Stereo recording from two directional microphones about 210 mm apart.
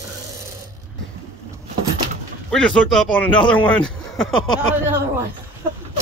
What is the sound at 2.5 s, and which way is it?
A man's voice, 5° left (ahead or behind).